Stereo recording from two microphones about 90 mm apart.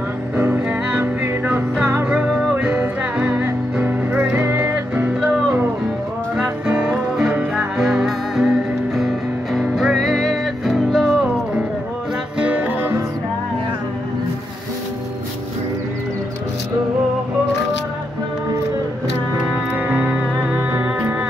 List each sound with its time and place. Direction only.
0.4 s music: 25° right (ahead or behind)
2.0 s music: 10° right (ahead or behind)
6.6 s music: 15° right (ahead or behind)
19.7 s music: 20° right (ahead or behind)